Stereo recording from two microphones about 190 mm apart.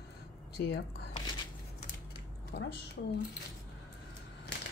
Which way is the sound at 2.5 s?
65° left (ahead or behind).